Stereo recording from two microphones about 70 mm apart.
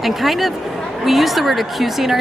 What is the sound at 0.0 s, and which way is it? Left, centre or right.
A woman's voice, centre.